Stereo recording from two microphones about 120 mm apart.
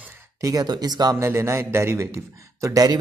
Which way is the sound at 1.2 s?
20° right (ahead or behind).